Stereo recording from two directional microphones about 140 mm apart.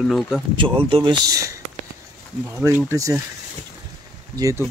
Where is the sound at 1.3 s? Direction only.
25° right (ahead or behind).